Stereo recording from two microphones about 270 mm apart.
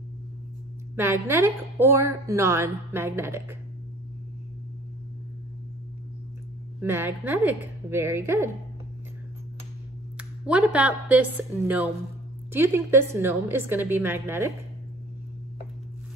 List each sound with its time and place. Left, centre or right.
0.9 s a woman's voice: centre
6.8 s a woman's voice: centre
10.1 s a woman's voice: centre